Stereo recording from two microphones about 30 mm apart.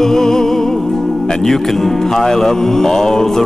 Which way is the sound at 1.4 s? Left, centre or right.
Centre.